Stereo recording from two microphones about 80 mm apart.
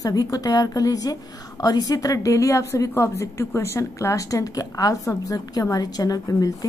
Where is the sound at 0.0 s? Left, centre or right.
Left.